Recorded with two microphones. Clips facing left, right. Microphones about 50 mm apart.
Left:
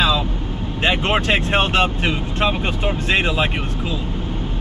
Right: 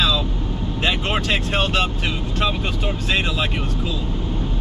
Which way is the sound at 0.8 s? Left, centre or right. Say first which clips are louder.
Left 4 dB; left.